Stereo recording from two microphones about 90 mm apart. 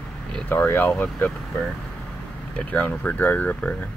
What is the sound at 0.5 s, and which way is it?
Speech, 20° left (ahead or behind).